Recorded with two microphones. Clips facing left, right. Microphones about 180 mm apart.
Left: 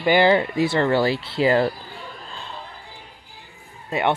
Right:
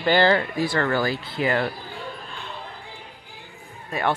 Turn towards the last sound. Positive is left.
turn(degrees=25)  # may be behind; listen again after turning